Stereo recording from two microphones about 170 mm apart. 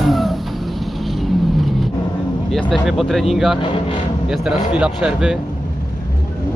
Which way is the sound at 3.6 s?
30° left (ahead or behind).